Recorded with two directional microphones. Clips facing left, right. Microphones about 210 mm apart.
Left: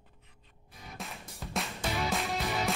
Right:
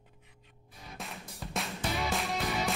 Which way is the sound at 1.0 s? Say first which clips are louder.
Even; centre (ahead or behind).